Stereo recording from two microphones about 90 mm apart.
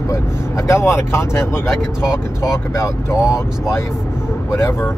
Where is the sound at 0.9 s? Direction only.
30° left (ahead or behind).